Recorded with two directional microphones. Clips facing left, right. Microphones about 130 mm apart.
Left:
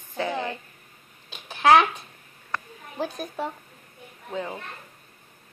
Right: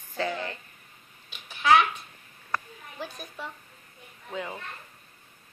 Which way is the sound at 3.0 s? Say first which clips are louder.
Left 9 dB; 40° left (ahead or behind).